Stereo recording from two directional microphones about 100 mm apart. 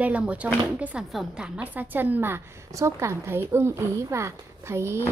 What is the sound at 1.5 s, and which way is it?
A woman's voice, 15° right (ahead or behind).